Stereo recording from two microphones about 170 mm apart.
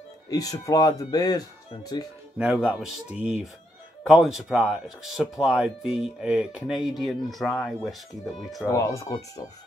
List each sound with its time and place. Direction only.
0.3 s speech: 20° left (ahead or behind)
2.3 s speech: 5° right (ahead or behind)
4.0 s speech: 5° right (ahead or behind)
8.6 s speech: 20° left (ahead or behind)